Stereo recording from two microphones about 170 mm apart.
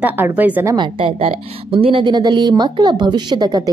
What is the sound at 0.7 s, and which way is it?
A woman's voice, 30° right (ahead or behind).